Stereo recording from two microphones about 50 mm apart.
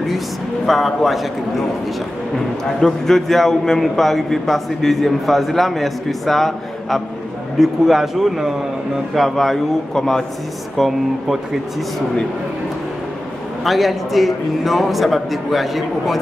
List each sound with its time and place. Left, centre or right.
0.7 s speech: centre
2.3 s speech: centre
13.7 s speech: centre